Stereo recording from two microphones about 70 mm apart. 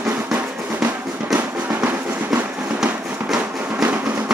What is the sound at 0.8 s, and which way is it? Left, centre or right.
Drum, right.